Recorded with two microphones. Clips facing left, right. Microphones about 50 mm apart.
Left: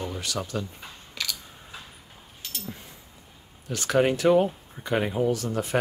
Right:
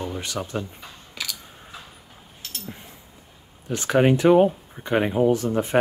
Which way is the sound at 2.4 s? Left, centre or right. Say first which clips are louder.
Even; centre.